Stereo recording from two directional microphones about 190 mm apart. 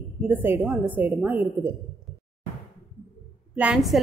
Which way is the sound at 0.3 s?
10° right (ahead or behind).